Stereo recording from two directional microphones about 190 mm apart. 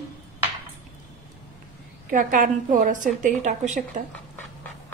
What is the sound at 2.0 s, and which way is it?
A woman's voice, 45° right (ahead or behind).